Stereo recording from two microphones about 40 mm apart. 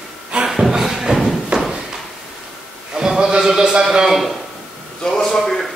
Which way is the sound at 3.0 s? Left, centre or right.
Centre.